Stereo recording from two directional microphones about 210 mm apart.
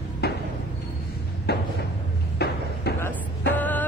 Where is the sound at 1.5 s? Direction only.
50° left (ahead or behind).